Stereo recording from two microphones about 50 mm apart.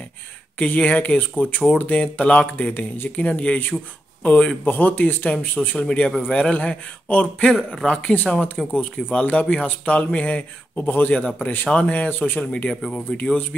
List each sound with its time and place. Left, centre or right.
0.6 s a man's voice: left
5.9 s a man's voice: centre
12.2 s speech: left
12.9 s a man's voice: centre